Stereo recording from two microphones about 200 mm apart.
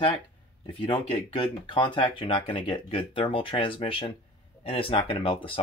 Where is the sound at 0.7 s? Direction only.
25° left (ahead or behind).